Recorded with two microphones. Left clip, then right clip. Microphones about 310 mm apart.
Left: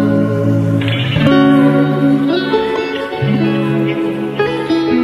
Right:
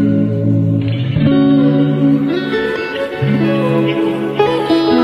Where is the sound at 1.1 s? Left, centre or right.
Left.